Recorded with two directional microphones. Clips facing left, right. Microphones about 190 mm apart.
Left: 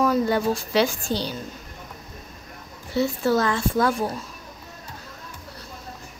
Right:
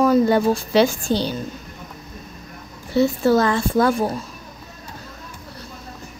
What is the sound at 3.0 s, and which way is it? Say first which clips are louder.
A woman's voice: right 5 dB; 30° right (ahead or behind).